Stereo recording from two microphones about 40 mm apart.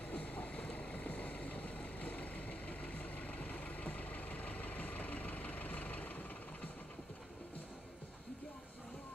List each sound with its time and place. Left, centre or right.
0.1 s vehicle: left